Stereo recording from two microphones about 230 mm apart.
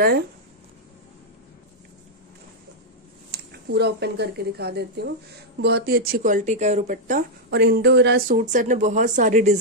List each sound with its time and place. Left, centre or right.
3.3 s speech: right